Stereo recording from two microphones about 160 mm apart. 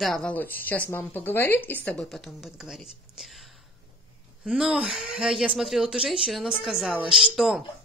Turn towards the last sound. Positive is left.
turn(degrees=-5)  # may be behind; listen again after turning